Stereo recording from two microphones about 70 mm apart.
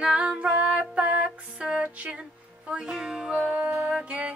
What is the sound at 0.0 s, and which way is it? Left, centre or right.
Music, centre.